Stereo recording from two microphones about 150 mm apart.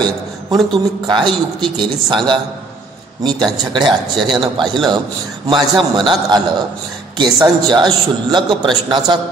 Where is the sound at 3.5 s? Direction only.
30° right (ahead or behind).